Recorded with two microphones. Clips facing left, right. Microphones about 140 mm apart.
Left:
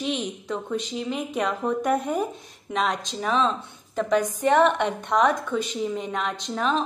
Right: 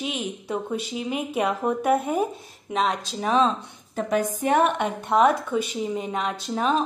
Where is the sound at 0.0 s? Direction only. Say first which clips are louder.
Left 2 dB; 10° right (ahead or behind).